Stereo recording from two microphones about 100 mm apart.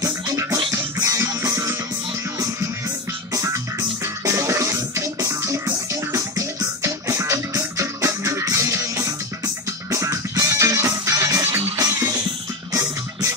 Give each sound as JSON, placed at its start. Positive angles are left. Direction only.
{"t": 0.0, "sound": "music", "side_deg": -30}
{"t": 4.0, "sound": "music", "side_deg": -35}